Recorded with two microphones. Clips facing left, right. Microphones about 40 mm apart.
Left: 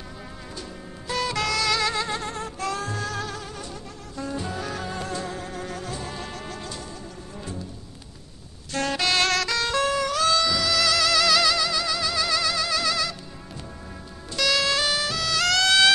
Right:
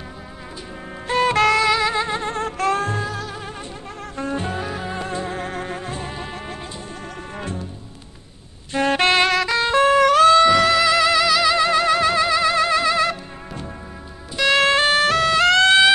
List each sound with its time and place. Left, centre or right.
1.0 s saxophone: right
1.6 s music: right
2.3 s music: right
4.2 s music: right
4.6 s music: right
7.3 s music: right
8.8 s music: right
9.2 s music: right
10.8 s music: right
11.2 s music: centre
11.5 s music: right
14.4 s music: right
15.3 s music: right